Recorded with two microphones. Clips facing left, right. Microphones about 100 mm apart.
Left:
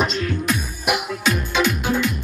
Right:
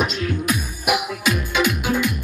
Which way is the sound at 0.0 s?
5° right (ahead or behind).